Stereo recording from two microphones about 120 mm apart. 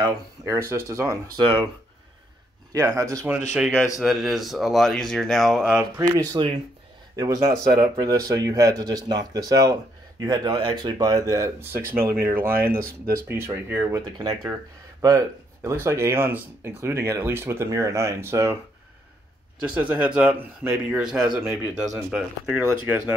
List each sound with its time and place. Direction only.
0.0 s speech: 25° right (ahead or behind)
1.4 s speech: 45° right (ahead or behind)
2.7 s speech: 30° right (ahead or behind)
4.0 s speech: centre (ahead or behind)
5.9 s speech: 30° right (ahead or behind)
19.6 s speech: 15° right (ahead or behind)
21.4 s speech: 15° right (ahead or behind)